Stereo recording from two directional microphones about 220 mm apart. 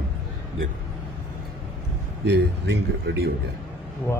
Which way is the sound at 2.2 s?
50° right (ahead or behind).